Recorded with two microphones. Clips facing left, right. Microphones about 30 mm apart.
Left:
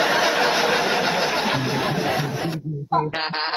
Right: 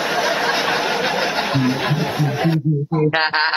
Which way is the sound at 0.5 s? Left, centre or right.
Right.